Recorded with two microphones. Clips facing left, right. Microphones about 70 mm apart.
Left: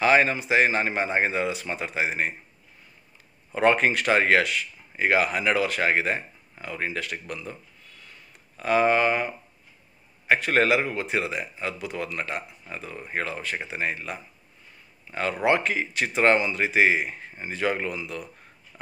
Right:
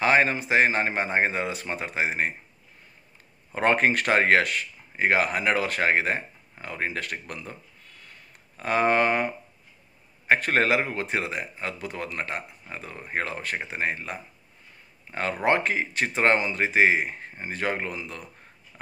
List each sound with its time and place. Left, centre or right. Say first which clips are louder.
0.0 s speech: left 1 dB; right
3.5 s speech: left 1 dB; right
8.5 s speech: left 1 dB; right
10.2 s speech: left 1 dB; right
15.4 s speech: even; right